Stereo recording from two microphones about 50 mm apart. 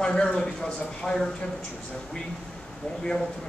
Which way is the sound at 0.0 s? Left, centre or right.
Centre.